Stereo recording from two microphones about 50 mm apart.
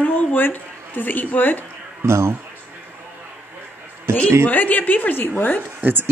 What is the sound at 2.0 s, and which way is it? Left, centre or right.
Speech, right.